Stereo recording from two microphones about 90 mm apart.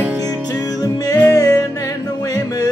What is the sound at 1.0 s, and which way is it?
Music, 40° left (ahead or behind).